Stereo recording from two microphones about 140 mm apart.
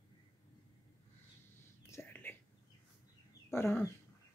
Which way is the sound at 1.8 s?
20° left (ahead or behind).